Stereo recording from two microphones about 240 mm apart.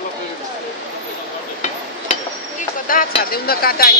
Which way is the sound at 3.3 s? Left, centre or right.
Left.